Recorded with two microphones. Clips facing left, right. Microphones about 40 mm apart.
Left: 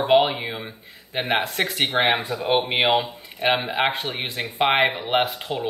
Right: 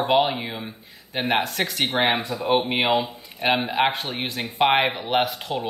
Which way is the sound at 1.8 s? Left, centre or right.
Left.